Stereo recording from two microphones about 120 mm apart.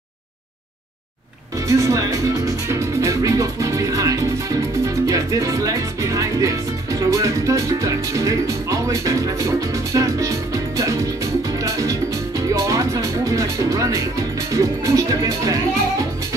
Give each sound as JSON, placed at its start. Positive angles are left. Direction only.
{"t": 1.7, "sound": "music", "side_deg": -25}